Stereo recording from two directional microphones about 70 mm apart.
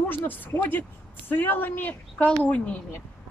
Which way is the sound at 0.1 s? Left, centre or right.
Left.